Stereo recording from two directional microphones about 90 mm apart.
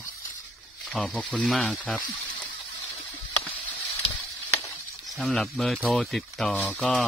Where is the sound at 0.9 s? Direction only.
5° left (ahead or behind).